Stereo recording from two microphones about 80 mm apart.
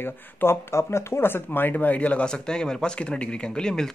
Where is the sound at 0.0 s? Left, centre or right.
Left.